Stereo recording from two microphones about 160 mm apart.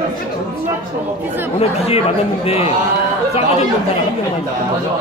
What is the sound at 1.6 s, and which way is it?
Speech, 40° left (ahead or behind).